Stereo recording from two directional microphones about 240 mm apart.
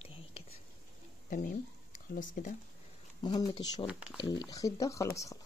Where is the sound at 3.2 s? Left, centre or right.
Centre.